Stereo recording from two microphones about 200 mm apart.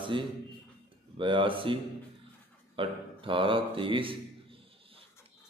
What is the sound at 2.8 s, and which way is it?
Speech, 25° right (ahead or behind).